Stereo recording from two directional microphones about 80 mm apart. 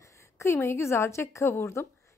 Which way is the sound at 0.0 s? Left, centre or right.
Left.